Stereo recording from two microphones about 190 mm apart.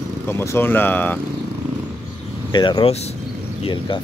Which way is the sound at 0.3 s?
15° left (ahead or behind).